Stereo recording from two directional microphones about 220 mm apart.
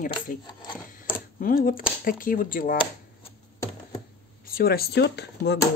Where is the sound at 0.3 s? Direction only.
35° left (ahead or behind).